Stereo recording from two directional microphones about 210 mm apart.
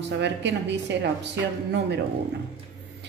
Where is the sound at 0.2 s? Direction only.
55° right (ahead or behind).